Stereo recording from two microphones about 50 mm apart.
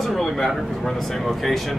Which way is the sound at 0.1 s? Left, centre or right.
Centre.